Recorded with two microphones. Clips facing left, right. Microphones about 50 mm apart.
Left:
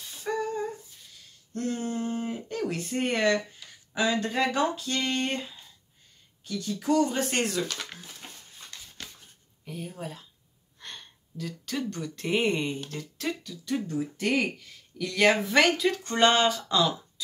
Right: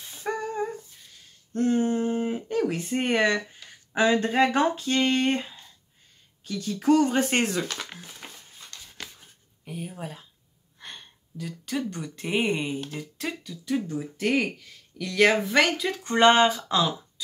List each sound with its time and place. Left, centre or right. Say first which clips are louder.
0.0 s humming: even; right
1.5 s speech: right 7 dB; right
7.8 s a sound: right 1 dB; centre
8.7 s a sound: even; centre
9.7 s speech: right 1 dB; centre
16.0 s speech: right 6 dB; centre
16.6 s speech: right 1 dB; centre